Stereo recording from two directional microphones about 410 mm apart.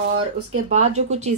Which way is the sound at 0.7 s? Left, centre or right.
Centre.